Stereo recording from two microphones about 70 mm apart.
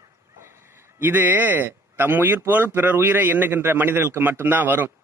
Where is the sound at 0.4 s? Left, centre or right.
Right.